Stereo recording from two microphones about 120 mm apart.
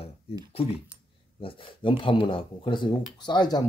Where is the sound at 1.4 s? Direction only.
45° left (ahead or behind).